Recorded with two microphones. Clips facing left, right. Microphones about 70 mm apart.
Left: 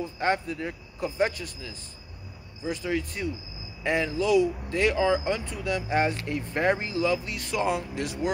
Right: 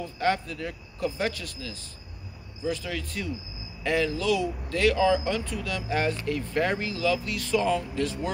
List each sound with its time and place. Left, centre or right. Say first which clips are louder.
0.0 s speech: even; left
4.2 s speech: left 4 dB; centre